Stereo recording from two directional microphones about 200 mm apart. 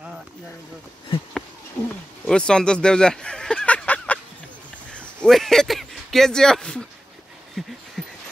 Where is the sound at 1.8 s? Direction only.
5° left (ahead or behind).